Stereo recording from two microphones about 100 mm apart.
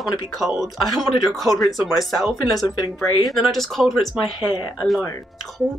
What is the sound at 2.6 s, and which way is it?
Speech, 40° left (ahead or behind).